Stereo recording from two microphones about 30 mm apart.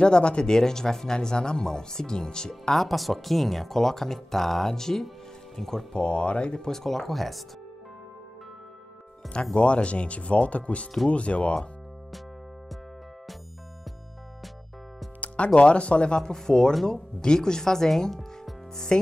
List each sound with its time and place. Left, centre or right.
0.0 s speech: left
0.5 s speech: centre
2.7 s speech: centre
4.7 s speech: centre
5.9 s speech: left
6.7 s speech: centre
9.3 s speech: left
15.1 s speech: left
16.2 s speech: centre